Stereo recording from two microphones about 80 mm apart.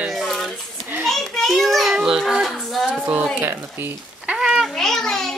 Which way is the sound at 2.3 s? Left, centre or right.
Centre.